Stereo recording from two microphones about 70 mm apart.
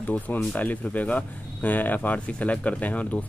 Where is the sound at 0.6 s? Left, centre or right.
Left.